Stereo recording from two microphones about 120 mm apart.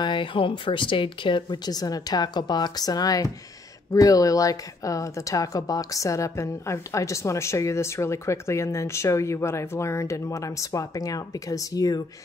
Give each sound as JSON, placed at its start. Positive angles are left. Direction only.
{"t": 0.0, "sound": "speech", "side_deg": 40}